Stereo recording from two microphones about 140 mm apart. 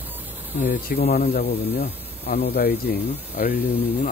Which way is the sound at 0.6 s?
90° left.